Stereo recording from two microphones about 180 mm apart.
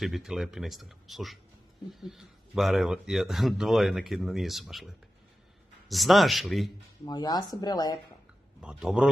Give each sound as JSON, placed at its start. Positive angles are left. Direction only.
{"t": 0.0, "sound": "speech", "side_deg": 0}
{"t": 5.9, "sound": "speech", "side_deg": 0}
{"t": 7.1, "sound": "speech", "side_deg": 20}
{"t": 8.5, "sound": "speech", "side_deg": -5}